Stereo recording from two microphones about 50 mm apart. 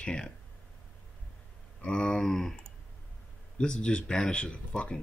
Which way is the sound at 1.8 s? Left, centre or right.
Centre.